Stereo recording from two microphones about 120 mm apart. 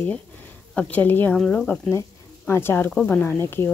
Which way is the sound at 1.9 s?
20° left (ahead or behind).